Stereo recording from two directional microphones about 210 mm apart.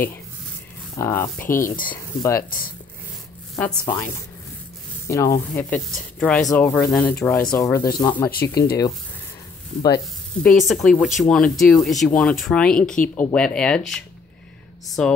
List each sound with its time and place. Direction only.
0.9 s speech: 10° left (ahead or behind)
1.4 s speech: 40° left (ahead or behind)
1.9 s speech: 15° left (ahead or behind)
3.5 s speech: 10° left (ahead or behind)
8.3 s speech: 45° left (ahead or behind)
10.4 s speech: centre (ahead or behind)